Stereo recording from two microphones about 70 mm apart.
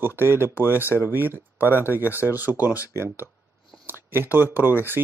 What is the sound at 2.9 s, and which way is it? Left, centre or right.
Speech, right.